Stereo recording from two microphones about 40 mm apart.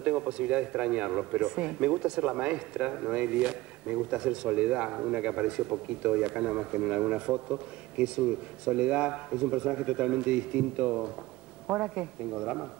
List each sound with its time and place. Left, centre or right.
0.0 s a man's voice: right